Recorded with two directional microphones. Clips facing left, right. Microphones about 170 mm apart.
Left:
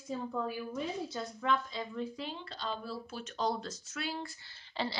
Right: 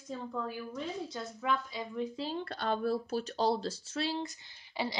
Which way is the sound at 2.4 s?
60° right (ahead or behind).